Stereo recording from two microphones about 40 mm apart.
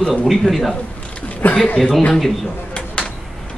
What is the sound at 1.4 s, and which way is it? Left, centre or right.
Speech, left.